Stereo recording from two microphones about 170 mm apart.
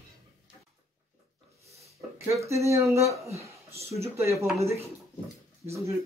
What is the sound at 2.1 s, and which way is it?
Speech, 15° right (ahead or behind).